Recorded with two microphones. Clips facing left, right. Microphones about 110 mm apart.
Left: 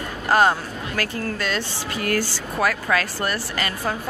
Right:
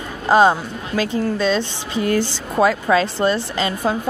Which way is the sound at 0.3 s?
20° right (ahead or behind).